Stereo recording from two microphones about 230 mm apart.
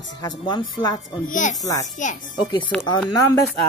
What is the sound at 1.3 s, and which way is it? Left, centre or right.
A woman's voice, left.